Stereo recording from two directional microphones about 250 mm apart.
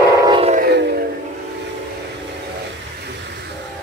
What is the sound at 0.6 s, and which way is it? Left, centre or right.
Music, right.